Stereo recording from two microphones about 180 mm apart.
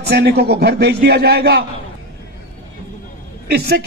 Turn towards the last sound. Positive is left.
turn(degrees=-60)  # may be behind; listen again after turning